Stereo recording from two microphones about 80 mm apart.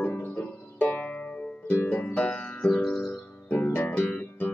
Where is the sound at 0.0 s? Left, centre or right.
Left; by 3.2 s centre.